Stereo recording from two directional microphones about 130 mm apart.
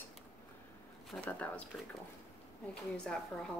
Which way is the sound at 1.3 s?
10° left (ahead or behind).